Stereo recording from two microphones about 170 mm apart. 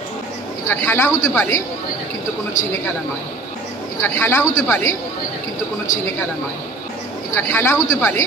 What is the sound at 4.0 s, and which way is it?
Speech, 10° left (ahead or behind).